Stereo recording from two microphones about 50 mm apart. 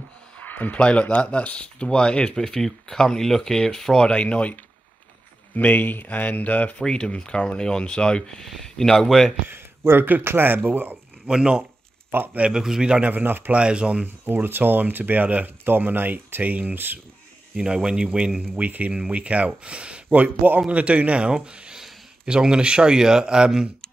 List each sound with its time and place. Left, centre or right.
0.5 s a sound: left
0.7 s speech: left
4.1 s speech: left
5.6 s speech: left
6.8 s speech: centre
9.5 s speech: right
11.2 s speech: centre
13.0 s speech: right
13.6 s speech: right
14.0 s speech: right
17.6 s speech: centre
18.6 s speech: right
20.2 s speech: right
20.6 s speech: right